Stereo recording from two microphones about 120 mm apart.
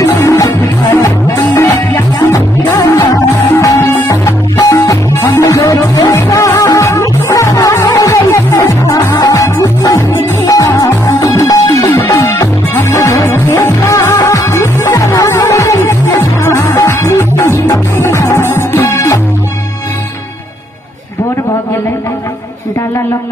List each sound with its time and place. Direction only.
0.0 s music: 25° left (ahead or behind)